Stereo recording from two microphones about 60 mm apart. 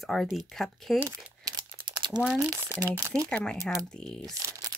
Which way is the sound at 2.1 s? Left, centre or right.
Centre.